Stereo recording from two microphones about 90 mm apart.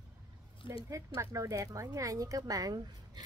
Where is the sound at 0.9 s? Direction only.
35° right (ahead or behind).